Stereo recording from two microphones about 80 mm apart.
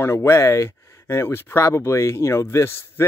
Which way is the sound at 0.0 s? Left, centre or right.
Left.